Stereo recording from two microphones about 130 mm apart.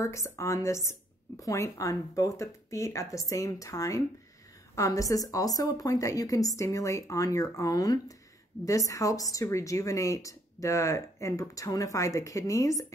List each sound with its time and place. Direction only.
0.0 s a woman's voice: 20° left (ahead or behind)